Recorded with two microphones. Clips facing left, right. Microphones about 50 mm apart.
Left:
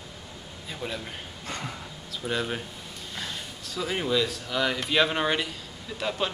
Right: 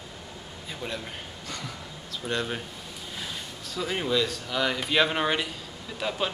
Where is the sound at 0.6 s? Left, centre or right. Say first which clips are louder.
Left 1 dB; centre.